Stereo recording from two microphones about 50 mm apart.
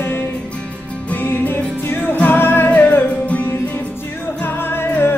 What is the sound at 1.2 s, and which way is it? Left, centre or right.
Music, left.